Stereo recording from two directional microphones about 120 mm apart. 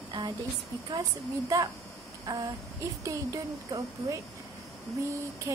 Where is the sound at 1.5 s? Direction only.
25° right (ahead or behind).